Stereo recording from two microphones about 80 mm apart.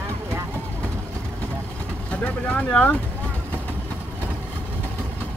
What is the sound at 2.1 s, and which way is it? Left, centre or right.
Vehicle, centre.